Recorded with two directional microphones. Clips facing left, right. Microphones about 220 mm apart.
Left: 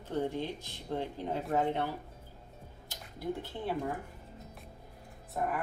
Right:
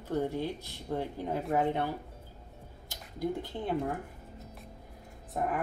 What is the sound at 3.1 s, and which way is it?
Speech, 15° right (ahead or behind).